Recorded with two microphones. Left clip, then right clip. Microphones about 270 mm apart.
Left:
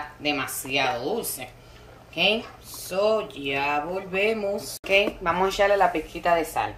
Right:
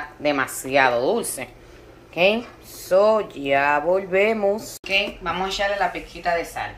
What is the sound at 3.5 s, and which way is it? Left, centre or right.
Speech, centre.